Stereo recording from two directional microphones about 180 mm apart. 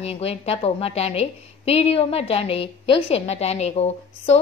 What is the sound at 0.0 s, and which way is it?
A woman's voice, 35° left (ahead or behind).